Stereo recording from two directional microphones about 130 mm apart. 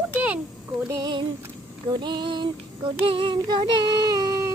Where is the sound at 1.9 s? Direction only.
35° right (ahead or behind).